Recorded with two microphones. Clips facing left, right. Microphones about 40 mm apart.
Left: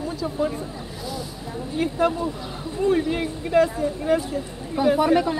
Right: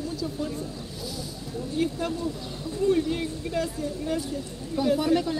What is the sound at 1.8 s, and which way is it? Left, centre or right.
Speech, left.